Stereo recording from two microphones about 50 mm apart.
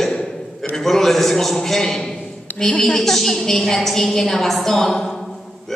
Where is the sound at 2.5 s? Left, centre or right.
Centre.